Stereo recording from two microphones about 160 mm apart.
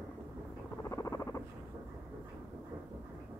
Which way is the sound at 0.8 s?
20° left (ahead or behind).